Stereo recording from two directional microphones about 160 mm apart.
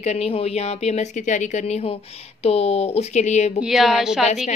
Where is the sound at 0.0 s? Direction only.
40° left (ahead or behind).